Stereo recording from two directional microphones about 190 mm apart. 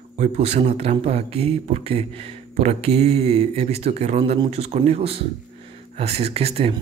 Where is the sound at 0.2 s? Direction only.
35° right (ahead or behind).